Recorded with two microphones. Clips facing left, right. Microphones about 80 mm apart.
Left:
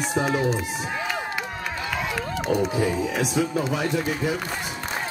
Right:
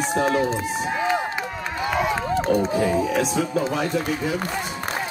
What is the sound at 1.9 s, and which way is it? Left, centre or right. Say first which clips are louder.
Crowd: right 7 dB; right.